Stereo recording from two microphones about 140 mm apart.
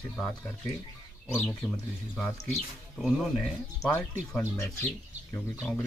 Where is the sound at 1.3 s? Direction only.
15° left (ahead or behind).